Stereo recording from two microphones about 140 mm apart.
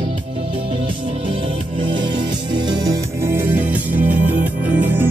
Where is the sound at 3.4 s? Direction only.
10° right (ahead or behind).